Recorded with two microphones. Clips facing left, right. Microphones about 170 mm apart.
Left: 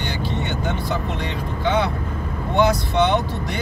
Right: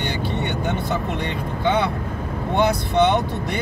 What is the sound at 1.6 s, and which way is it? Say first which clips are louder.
Speech: even; 55° right (ahead or behind).